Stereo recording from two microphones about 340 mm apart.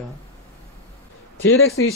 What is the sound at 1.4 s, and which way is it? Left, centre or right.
Speech, left.